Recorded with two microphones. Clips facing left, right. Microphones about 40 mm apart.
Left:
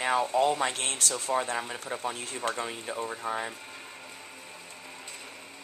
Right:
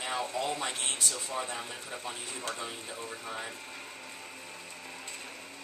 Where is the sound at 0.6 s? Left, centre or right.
Left.